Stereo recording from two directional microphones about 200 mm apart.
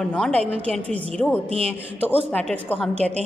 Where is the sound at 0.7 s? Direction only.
5° left (ahead or behind).